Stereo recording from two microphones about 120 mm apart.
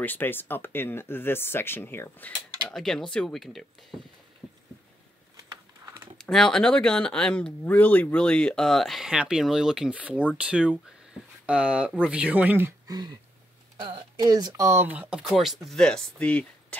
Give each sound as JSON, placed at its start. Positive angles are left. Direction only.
{"t": 0.0, "sound": "speech", "side_deg": 15}
{"t": 2.7, "sound": "speech", "side_deg": 5}
{"t": 6.1, "sound": "speech", "side_deg": 5}
{"t": 12.8, "sound": "speech", "side_deg": -35}